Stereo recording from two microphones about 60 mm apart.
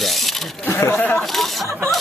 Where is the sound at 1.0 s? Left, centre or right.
Left.